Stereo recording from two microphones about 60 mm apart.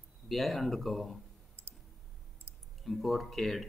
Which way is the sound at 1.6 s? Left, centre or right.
Right.